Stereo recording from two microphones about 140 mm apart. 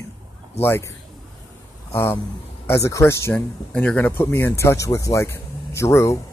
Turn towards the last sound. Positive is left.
turn(degrees=20)  # may be behind; listen again after turning